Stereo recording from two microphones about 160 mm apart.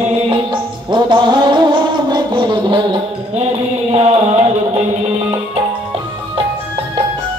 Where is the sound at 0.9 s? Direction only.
30° right (ahead or behind).